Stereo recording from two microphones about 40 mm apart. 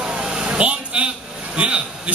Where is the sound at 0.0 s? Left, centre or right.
Right.